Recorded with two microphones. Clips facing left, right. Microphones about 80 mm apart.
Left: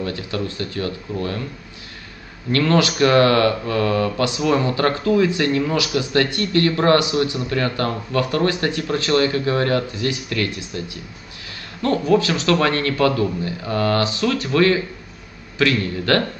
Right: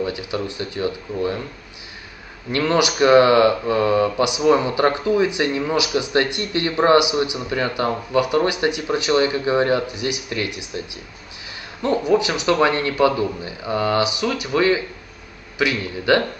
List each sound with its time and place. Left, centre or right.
0.0 s speech: centre
2.5 s speech: centre
11.8 s speech: centre